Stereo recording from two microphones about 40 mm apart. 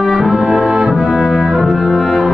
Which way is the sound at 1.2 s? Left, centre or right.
Centre.